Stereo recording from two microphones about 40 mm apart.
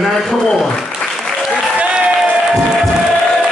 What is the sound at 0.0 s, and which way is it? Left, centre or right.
Applause, centre.